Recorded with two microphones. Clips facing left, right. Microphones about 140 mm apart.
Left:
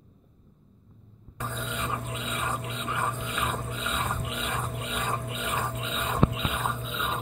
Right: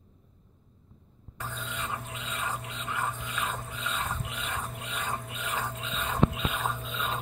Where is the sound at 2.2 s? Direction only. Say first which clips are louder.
Left 2 dB; 15° left (ahead or behind).